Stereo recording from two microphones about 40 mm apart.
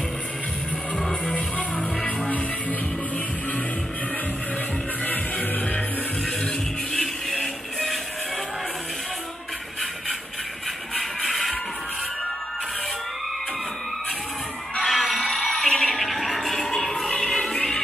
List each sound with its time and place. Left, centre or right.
0.9 s music: centre
2.0 s music: left
5.0 s music: left
6.4 s music: centre
11.0 s music: centre
14.9 s a sound: centre
15.8 s music: centre